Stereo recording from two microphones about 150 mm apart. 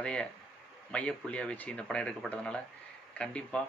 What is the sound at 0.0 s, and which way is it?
Speech, 5° left (ahead or behind).